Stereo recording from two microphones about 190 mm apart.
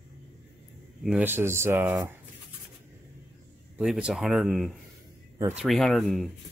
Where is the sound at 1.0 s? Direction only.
5° right (ahead or behind).